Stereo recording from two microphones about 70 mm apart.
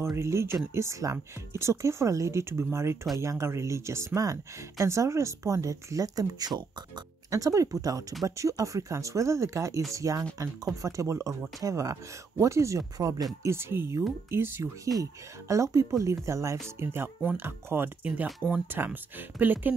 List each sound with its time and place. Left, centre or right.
0.1 s speech: right
4.2 s speech: right
12.9 s speech: right
14.9 s speech: right
16.8 s speech: right